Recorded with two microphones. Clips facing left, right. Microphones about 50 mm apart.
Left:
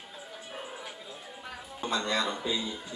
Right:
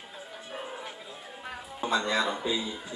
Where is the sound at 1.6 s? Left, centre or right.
Centre.